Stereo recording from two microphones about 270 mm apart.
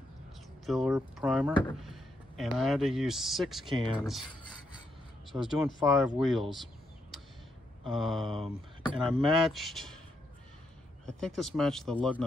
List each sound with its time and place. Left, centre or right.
0.7 s speech: centre
3.6 s speech: centre
4.0 s speech: centre
5.3 s speech: centre
6.3 s a sound: centre
7.8 s speech: centre
11.1 s speech: centre